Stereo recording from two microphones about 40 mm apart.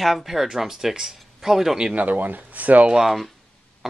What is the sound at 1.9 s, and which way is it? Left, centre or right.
Speech, right.